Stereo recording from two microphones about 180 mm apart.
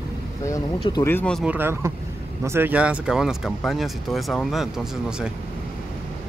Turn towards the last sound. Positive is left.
turn(degrees=0)  # may be behind; listen again after turning